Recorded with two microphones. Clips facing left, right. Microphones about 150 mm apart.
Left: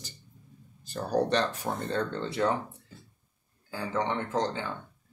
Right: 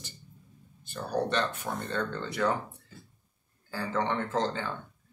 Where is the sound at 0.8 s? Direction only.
35° left (ahead or behind).